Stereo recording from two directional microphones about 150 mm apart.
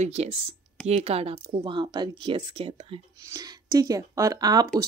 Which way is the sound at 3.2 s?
25° right (ahead or behind).